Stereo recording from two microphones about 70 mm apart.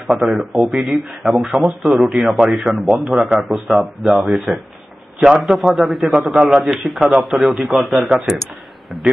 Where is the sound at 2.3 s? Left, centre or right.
Centre.